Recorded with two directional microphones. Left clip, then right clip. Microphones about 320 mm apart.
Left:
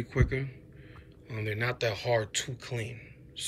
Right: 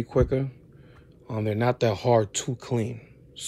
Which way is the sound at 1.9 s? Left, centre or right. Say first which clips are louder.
Right 7 dB; centre.